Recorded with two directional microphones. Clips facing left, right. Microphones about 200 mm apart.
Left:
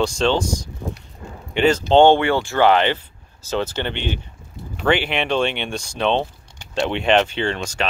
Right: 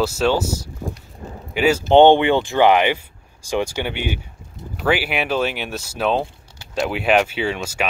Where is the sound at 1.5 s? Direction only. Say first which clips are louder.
Right 1 dB; 10° right (ahead or behind).